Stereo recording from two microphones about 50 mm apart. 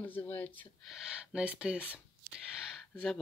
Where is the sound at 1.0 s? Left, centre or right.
Centre.